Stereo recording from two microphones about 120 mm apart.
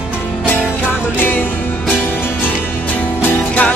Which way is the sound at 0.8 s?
15° left (ahead or behind).